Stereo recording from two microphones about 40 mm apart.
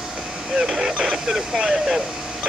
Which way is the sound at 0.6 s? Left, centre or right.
Centre.